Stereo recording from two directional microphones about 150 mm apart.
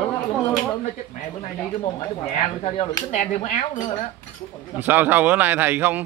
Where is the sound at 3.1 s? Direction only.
55° left (ahead or behind).